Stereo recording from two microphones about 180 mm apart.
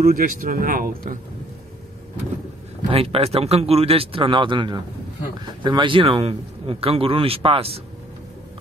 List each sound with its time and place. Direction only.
0.0 s speech: 50° right (ahead or behind)
2.9 s a man's voice: 30° right (ahead or behind)